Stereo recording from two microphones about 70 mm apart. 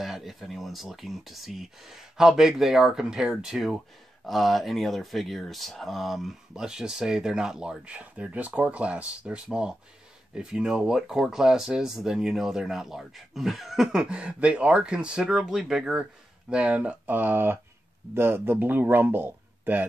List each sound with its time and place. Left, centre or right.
0.0 s speech: centre
14.0 s speech: centre